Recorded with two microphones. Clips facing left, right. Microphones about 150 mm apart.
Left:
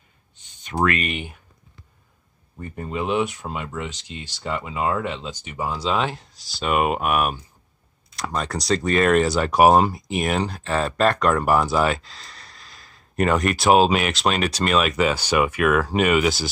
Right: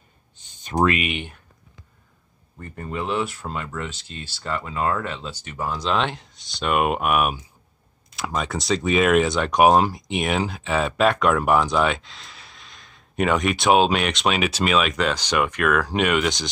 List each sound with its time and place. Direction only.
0.7 s speech: 15° right (ahead or behind)
1.0 s speech: centre (ahead or behind)
2.6 s speech: 15° left (ahead or behind)